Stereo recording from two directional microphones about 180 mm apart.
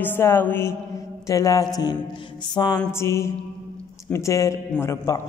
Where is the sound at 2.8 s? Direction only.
15° left (ahead or behind).